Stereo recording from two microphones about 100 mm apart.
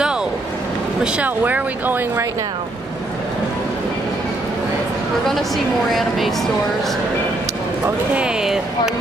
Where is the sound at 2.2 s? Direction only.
35° right (ahead or behind).